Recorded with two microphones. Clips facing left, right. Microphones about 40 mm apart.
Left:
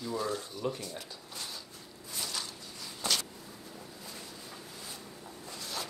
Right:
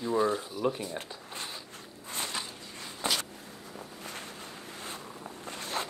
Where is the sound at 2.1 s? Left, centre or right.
Right.